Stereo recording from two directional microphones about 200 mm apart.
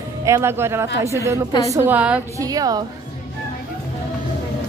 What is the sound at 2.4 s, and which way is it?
Speech, 20° right (ahead or behind).